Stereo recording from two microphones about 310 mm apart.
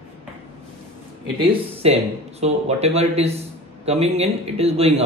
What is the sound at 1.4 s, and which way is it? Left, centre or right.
A man's voice, centre.